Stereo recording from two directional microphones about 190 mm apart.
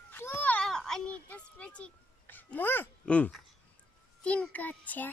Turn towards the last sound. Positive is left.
turn(degrees=10)  # may be behind; listen again after turning